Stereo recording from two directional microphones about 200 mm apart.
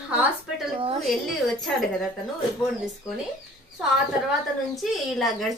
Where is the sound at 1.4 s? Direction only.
Centre (ahead or behind).